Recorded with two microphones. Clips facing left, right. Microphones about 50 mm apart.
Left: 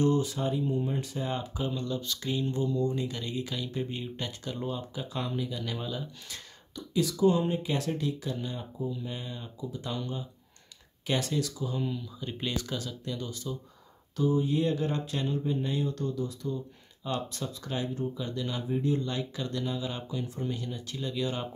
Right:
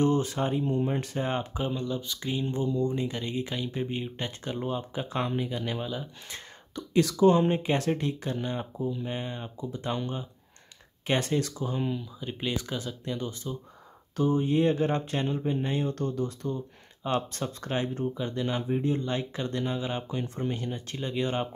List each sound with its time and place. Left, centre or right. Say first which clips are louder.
0.0 s speech: right 1 dB; right
1.8 s speech: right 1 dB; centre; by 5.8 s right
5.8 s speech: right 2 dB; centre
6.7 s speech: right 4 dB; right
11.9 s speech: right 2 dB; centre
14.1 s speech: right 2 dB; right